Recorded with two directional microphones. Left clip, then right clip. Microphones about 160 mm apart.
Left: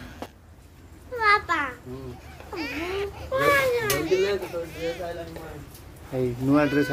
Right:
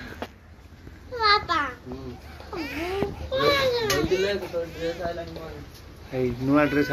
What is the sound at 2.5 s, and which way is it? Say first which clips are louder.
A child's voice: even; centre (ahead or behind).